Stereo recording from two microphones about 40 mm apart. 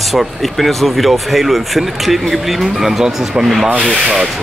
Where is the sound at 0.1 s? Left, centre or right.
Centre.